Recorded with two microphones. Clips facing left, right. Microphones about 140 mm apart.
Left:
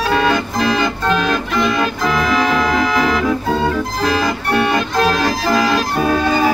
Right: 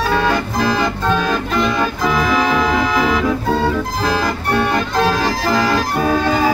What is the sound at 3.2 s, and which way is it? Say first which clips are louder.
Organ: even; 5° right (ahead or behind).